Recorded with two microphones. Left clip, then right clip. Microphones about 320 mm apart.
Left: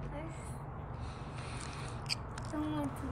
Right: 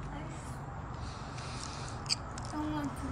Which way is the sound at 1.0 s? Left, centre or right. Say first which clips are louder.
Right 3 dB; centre.